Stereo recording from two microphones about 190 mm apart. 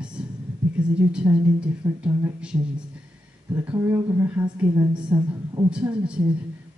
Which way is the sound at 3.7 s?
15° right (ahead or behind).